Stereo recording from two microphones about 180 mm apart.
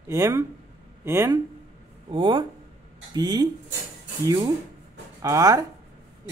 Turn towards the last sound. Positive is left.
turn(degrees=-20)  # may be behind; listen again after turning